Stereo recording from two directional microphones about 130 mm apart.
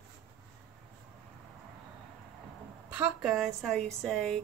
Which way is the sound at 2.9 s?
10° right (ahead or behind).